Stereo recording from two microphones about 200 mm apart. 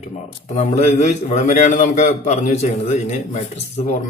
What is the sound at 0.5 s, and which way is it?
A man's voice, 30° left (ahead or behind).